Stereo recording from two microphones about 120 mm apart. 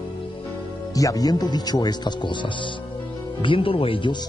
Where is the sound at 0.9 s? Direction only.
30° left (ahead or behind).